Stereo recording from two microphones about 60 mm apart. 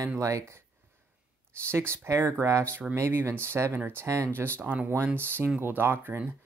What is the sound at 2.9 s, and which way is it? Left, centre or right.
Speech, right.